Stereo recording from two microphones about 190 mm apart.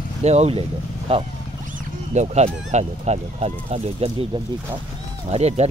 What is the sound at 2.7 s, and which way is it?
Speech, 35° right (ahead or behind).